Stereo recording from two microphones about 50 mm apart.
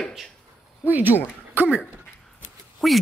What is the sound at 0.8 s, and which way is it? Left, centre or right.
Speech, right.